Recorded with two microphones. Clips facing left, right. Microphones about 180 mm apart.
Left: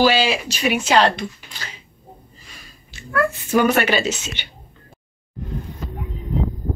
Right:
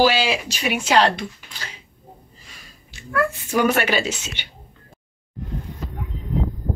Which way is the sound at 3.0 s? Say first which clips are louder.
Left 1 dB; 10° right (ahead or behind).